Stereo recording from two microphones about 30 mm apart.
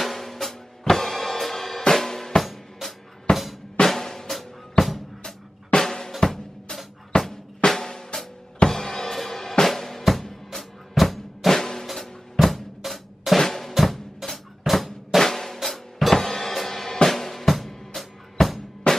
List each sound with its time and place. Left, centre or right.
0.0 s music: centre
2.0 s drum kit: centre
2.4 s drum: centre
3.3 s drum: left
3.8 s drum: centre
4.3 s drum: centre
5.8 s drum: centre
7.1 s drum: left
7.8 s drum: centre
8.6 s drum kit: centre
11.0 s drum: centre
11.8 s drum: centre
13.4 s drum: centre
18.9 s music: left